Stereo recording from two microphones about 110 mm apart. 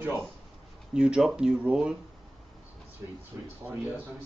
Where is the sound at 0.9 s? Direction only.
5° right (ahead or behind).